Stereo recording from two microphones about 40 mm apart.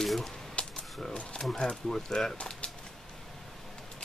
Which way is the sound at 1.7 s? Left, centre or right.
Centre.